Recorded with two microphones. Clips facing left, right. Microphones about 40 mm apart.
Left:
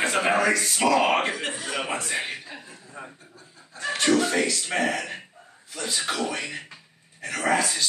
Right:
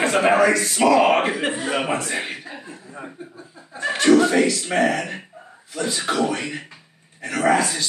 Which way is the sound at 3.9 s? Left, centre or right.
Centre.